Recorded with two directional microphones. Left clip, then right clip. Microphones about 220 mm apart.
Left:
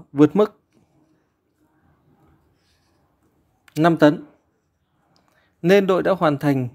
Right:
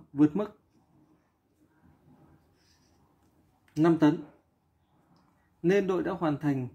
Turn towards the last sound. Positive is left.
turn(degrees=45)  # may be behind; listen again after turning